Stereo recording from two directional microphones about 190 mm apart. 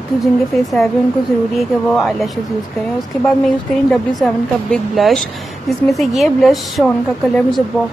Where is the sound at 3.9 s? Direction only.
5° left (ahead or behind).